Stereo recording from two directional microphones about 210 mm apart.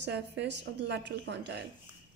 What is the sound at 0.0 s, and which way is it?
A woman's voice, 55° right (ahead or behind).